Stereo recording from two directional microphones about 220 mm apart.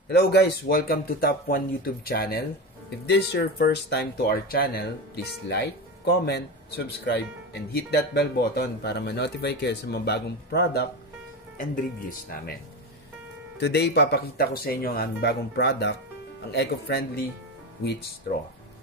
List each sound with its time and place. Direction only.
0.1 s speech: 45° left (ahead or behind)
13.6 s speech: 50° left (ahead or behind)